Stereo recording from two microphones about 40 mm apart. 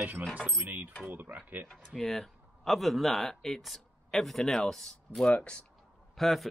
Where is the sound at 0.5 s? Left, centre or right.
Right.